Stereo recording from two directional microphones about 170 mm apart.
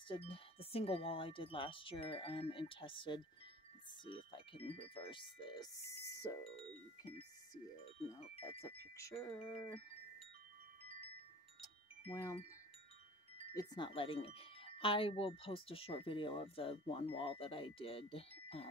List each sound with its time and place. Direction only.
0.1 s speech: 35° left (ahead or behind); by 6.3 s 20° left (ahead or behind)
8.2 s speech: 35° left (ahead or behind)
8.9 s wind chime: 15° left (ahead or behind)
9.4 s speech: 35° left (ahead or behind)
12.1 s wind chime: 15° left (ahead or behind)
13.6 s speech: 25° left (ahead or behind)